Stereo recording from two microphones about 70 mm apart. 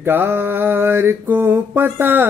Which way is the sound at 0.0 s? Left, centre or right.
Right.